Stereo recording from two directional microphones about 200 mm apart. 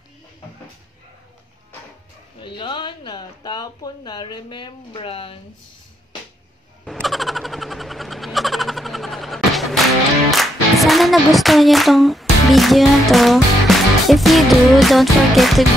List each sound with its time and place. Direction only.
2.4 s speech: 25° left (ahead or behind)
6.8 s a sound: centre (ahead or behind)
10.3 s music: centre (ahead or behind)